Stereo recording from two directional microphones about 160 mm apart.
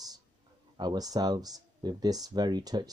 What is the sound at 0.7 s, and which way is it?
Speech, 25° right (ahead or behind).